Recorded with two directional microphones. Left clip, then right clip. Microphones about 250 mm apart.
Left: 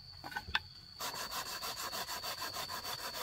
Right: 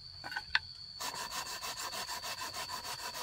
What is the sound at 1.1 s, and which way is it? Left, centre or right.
Sawing, centre.